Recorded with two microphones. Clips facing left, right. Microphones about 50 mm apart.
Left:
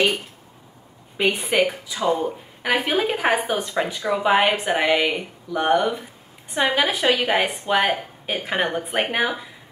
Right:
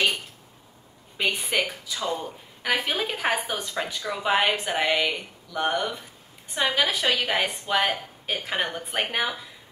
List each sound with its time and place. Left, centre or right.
1.4 s a woman's voice: centre